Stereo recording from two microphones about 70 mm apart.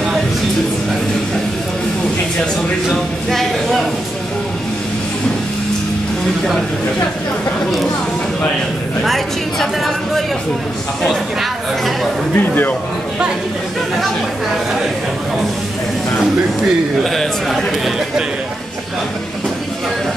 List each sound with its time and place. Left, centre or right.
2.9 s a woman's voice: centre
9.0 s a woman's voice: centre
12.4 s speech: left
17.0 s a woman's voice: centre